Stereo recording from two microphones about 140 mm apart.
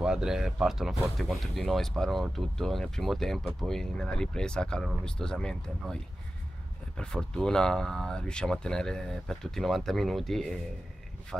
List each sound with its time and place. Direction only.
0.0 s speech: 5° right (ahead or behind)
7.0 s speech: 5° left (ahead or behind)